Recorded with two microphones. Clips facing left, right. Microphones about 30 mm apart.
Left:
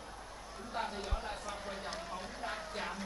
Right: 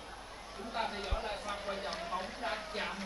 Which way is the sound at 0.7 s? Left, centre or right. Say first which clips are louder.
Right 2 dB; right.